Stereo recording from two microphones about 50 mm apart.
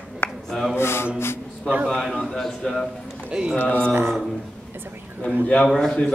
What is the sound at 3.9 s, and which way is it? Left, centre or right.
Speech, right.